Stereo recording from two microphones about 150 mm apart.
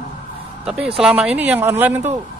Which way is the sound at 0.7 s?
5° right (ahead or behind).